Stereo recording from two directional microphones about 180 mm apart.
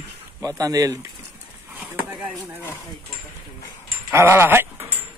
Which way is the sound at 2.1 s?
10° right (ahead or behind).